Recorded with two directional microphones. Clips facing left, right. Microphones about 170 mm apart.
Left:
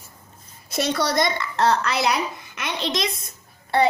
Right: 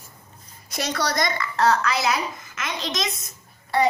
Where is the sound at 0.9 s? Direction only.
25° left (ahead or behind).